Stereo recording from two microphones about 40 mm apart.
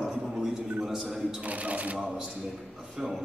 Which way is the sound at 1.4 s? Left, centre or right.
Right.